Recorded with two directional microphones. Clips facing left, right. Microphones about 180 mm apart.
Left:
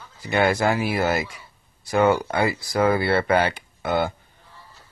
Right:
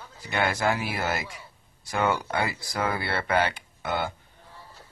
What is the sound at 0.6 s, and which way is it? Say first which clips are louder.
Speech: left 5 dB; 45° left (ahead or behind).